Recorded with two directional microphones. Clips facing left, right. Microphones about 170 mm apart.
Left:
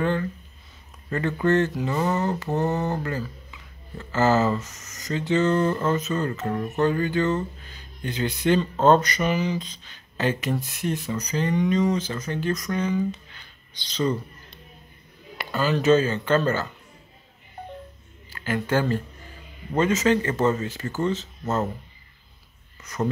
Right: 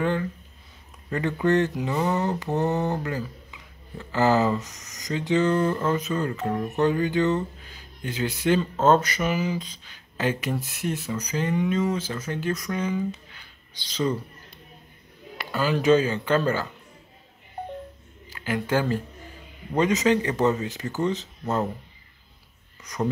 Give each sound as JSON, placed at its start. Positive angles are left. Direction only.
{"t": 0.0, "sound": "speech", "side_deg": -10}
{"t": 18.3, "sound": "speech", "side_deg": -10}
{"t": 22.8, "sound": "a sound", "side_deg": -15}